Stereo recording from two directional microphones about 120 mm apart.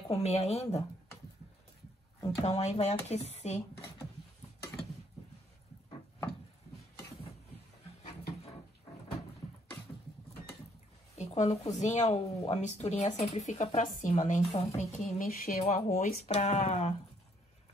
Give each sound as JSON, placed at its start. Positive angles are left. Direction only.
{"t": 0.1, "sound": "a woman's voice", "side_deg": 60}
{"t": 2.4, "sound": "a woman's voice", "side_deg": 65}
{"t": 11.1, "sound": "speech", "side_deg": 65}
{"t": 13.4, "sound": "a woman's voice", "side_deg": 75}